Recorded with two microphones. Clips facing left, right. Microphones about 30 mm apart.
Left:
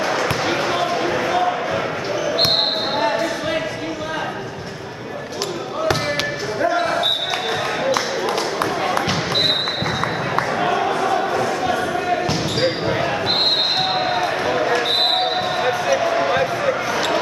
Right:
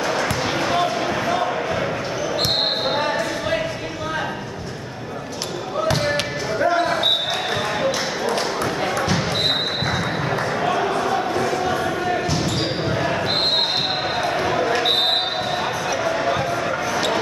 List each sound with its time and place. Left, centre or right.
0.0 s basketball bounce: centre
3.0 s basketball bounce: centre
6.6 s basketball bounce: centre
8.9 s basketball bounce: left
10.6 s a sound: centre
14.2 s basketball bounce: centre
15.6 s basketball bounce: centre